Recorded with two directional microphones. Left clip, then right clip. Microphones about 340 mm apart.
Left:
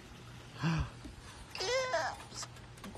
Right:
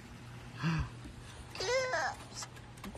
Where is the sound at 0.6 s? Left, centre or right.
Centre.